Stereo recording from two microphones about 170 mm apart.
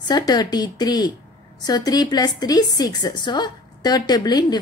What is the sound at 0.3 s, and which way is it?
A woman's voice, 25° left (ahead or behind).